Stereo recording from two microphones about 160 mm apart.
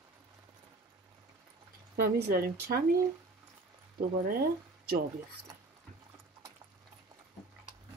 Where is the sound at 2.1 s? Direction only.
75° right (ahead or behind).